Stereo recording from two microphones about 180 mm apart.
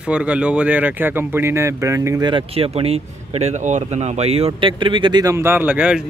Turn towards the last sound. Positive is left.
turn(degrees=-10)  # may be behind; listen again after turning